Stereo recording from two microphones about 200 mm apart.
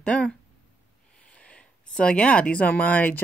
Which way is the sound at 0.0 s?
5° left (ahead or behind).